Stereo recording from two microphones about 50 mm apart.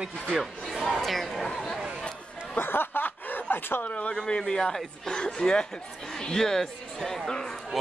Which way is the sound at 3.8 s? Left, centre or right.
Left.